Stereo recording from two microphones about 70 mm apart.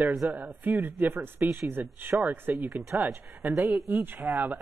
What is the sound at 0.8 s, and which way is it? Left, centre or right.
Speech, right.